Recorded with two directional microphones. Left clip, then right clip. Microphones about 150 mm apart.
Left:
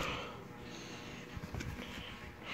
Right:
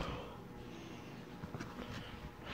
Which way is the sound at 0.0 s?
Centre (ahead or behind).